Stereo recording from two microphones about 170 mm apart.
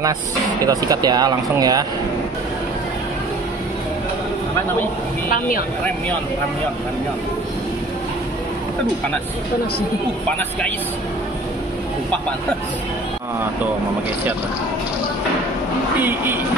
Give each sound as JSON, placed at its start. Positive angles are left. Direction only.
{"t": 0.7, "sound": "speech", "side_deg": -20}